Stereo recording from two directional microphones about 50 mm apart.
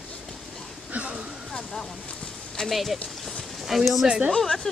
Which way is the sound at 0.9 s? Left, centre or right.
Right.